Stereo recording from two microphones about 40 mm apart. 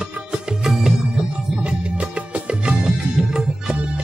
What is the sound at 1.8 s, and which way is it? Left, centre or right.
Music, right.